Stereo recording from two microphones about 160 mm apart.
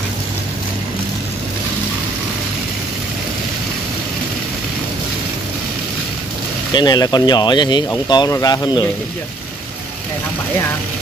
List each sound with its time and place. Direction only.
6.7 s speech: 25° left (ahead or behind)